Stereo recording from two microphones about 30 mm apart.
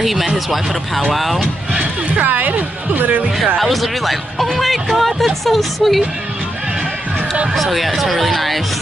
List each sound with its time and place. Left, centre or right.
0.0 s speech: centre
1.8 s speech: right
3.6 s speech: centre
7.5 s speech: centre